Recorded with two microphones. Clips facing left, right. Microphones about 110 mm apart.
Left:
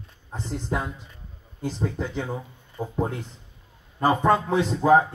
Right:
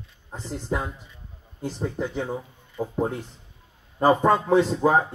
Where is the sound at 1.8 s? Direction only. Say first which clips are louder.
Right 2 dB; 10° right (ahead or behind).